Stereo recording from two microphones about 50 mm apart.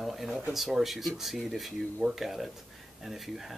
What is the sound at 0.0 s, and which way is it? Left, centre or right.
Speech, centre.